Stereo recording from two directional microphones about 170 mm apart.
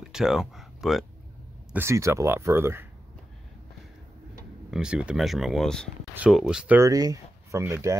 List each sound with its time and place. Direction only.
0.0 s a sound: 5° right (ahead or behind)
1.7 s speech: 15° right (ahead or behind)
4.6 s speech: 5° right (ahead or behind)
6.9 s speech: 20° right (ahead or behind)